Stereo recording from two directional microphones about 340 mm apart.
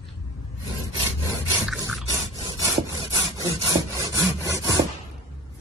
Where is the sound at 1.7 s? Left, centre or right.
Centre.